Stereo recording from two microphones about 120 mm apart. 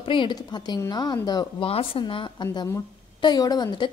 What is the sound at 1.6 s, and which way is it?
Speech, 50° left (ahead or behind).